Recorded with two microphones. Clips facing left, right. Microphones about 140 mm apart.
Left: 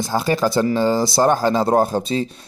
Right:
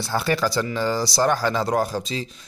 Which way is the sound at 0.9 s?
50° left (ahead or behind).